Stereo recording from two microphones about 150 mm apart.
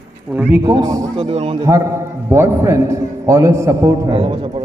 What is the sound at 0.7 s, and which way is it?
Speech, 25° right (ahead or behind).